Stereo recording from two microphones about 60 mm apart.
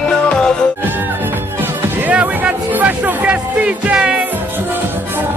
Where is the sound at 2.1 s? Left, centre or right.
Centre.